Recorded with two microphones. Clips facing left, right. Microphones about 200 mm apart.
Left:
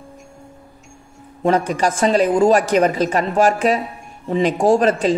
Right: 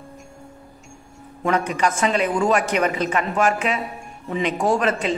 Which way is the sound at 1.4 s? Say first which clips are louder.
Left 4 dB; 35° left (ahead or behind).